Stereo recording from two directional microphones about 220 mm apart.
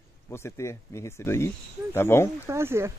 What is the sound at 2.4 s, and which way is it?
Speech, 10° right (ahead or behind).